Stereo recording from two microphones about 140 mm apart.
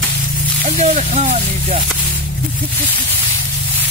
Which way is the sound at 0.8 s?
55° right (ahead or behind).